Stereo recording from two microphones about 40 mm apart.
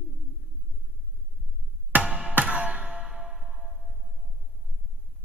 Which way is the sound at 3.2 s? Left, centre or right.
Centre.